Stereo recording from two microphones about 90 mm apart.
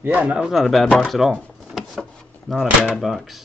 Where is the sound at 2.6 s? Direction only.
10° right (ahead or behind).